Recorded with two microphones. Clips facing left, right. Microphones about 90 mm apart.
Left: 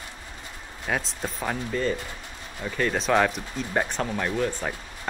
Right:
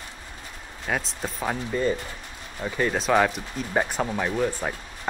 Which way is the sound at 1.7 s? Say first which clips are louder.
Right 2 dB; 15° right (ahead or behind).